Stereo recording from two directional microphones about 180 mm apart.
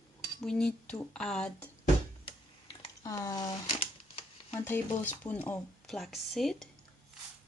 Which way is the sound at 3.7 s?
30° left (ahead or behind).